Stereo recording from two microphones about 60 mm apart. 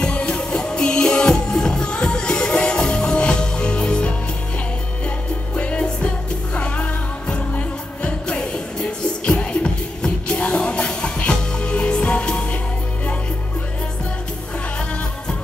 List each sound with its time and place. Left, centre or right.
0.0 s music: centre
5.6 s music: centre